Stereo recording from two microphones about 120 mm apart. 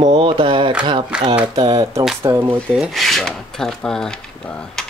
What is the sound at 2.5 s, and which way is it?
Filing, 5° left (ahead or behind).